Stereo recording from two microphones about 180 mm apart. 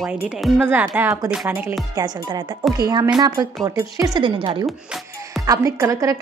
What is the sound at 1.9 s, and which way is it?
A woman's voice, 20° right (ahead or behind).